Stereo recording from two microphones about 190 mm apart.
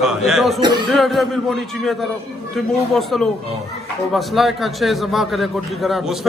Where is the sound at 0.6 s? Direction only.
20° right (ahead or behind).